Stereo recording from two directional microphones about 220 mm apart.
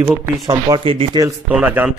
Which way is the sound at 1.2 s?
5° right (ahead or behind).